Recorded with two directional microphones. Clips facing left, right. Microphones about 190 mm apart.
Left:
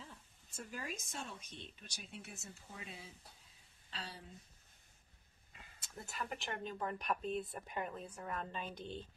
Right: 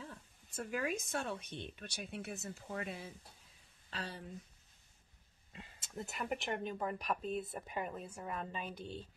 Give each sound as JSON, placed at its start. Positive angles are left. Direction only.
{"t": 0.0, "sound": "speech", "side_deg": -60}
{"t": 5.5, "sound": "speech", "side_deg": -25}